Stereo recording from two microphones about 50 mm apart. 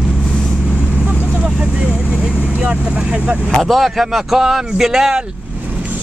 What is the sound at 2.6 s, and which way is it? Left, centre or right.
Vehicle, right.